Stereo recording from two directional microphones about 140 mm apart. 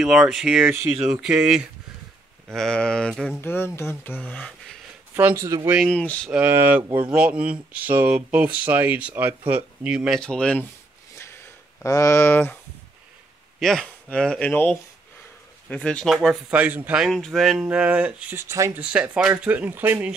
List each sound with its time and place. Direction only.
0.0 s speech: 5° right (ahead or behind)
2.5 s speech: 5° left (ahead or behind)
3.3 s speech: 15° left (ahead or behind)
5.1 s speech: 15° right (ahead or behind)
5.9 s speech: 5° left (ahead or behind)
6.3 s speech: 15° right (ahead or behind)
6.8 s speech: 35° right (ahead or behind)
7.1 s speech: 10° right (ahead or behind); by 10.7 s 10° left (ahead or behind)
11.8 s speech: 20° left (ahead or behind)
13.6 s speech: 5° left (ahead or behind)
16.5 s speech: 10° right (ahead or behind)